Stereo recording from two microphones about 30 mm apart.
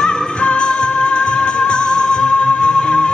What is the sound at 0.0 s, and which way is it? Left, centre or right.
Music, left.